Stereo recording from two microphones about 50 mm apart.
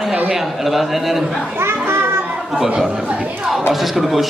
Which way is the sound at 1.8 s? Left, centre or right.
Right.